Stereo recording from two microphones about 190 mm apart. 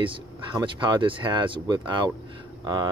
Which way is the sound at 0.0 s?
25° right (ahead or behind).